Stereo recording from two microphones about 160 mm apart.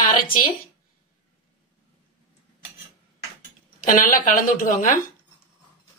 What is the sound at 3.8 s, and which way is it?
A woman's voice, 60° left (ahead or behind).